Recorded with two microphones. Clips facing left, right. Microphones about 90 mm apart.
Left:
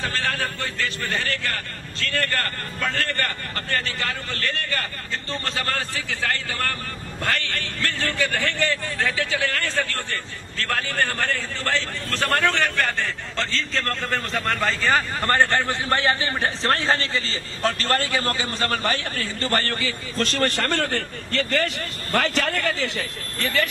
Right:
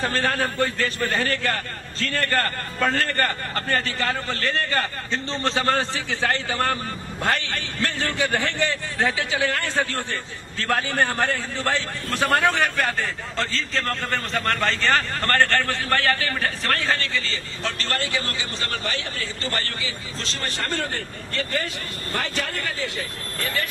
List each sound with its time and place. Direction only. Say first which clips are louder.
0.0 s a man's voice: right 3 dB; 40° right (ahead or behind); by 15.2 s 5° left (ahead or behind)
15.2 s a man's voice: even; 15° left (ahead or behind); by 23.7 s 70° left (ahead or behind)